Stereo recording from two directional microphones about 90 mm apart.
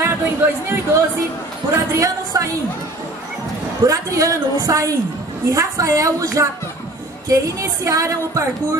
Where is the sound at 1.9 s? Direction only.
40° right (ahead or behind).